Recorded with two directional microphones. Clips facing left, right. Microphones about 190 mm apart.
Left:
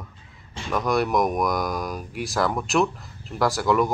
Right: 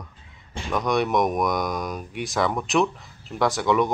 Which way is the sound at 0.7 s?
Centre (ahead or behind).